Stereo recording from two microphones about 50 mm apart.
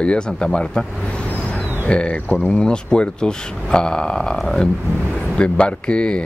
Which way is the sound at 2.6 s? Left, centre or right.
Centre.